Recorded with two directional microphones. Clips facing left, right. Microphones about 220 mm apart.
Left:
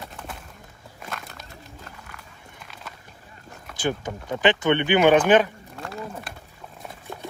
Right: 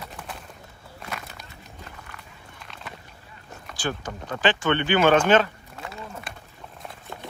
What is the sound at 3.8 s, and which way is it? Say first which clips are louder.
Speech: left 4 dB; 20° left (ahead or behind).